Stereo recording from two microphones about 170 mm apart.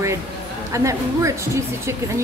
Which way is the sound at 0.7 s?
20° right (ahead or behind).